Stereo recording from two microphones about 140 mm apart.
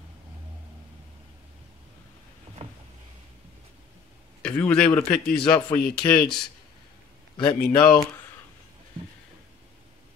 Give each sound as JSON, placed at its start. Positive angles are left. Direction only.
{"t": 4.4, "sound": "a man's voice", "side_deg": 10}
{"t": 7.3, "sound": "a man's voice", "side_deg": 35}